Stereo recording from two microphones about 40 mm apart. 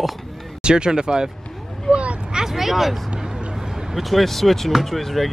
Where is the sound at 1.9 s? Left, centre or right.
Right.